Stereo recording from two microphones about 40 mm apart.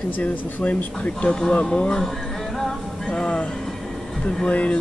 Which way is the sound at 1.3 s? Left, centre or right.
Centre.